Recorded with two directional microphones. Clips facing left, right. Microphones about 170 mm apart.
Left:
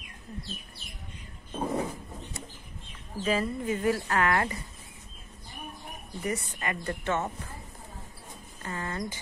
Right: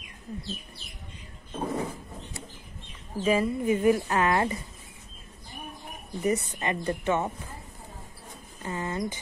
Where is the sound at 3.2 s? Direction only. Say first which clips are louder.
Right 4 dB; 15° right (ahead or behind).